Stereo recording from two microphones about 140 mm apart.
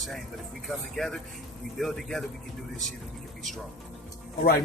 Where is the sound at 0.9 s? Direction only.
Centre (ahead or behind).